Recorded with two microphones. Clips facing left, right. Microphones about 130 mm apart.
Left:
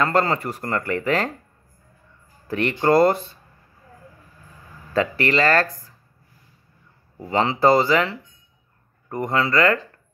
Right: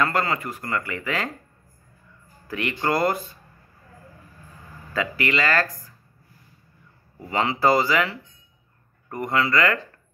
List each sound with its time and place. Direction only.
0.0 s speech: 30° left (ahead or behind)
2.4 s speech: 35° left (ahead or behind)
4.9 s speech: 35° left (ahead or behind)
7.2 s speech: 30° left (ahead or behind)